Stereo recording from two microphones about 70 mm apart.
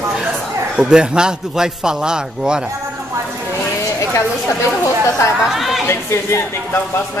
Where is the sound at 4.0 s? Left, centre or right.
Left.